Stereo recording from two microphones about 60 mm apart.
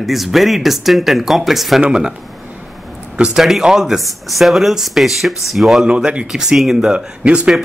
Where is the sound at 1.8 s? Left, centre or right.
Centre.